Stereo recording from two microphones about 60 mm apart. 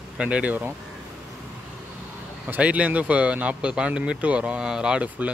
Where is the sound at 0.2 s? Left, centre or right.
Right.